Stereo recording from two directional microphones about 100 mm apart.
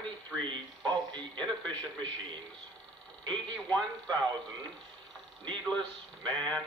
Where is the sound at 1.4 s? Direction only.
10° left (ahead or behind).